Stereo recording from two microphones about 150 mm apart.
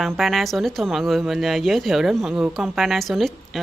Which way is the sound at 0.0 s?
Centre (ahead or behind).